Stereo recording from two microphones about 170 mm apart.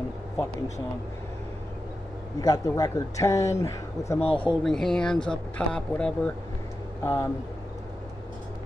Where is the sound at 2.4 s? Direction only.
20° left (ahead or behind).